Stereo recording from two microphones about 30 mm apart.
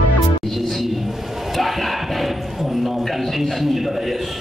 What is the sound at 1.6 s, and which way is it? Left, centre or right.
Battle cry, centre.